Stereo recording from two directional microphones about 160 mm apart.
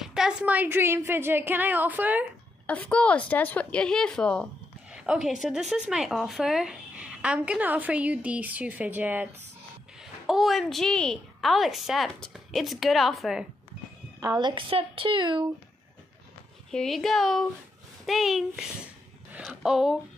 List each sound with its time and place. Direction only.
0.0 s speech: 5° right (ahead or behind)
2.6 s a woman's voice: 10° left (ahead or behind)
4.9 s a woman's voice: 5° right (ahead or behind)
14.2 s a woman's voice: 25° right (ahead or behind)
16.7 s a woman's voice: centre (ahead or behind)